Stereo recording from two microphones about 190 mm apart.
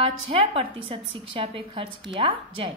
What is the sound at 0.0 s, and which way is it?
A woman's voice, 30° right (ahead or behind).